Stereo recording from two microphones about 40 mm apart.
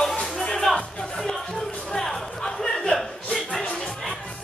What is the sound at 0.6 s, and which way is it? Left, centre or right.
Music, centre.